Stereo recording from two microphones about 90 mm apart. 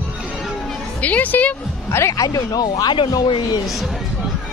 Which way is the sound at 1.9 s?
30° left (ahead or behind).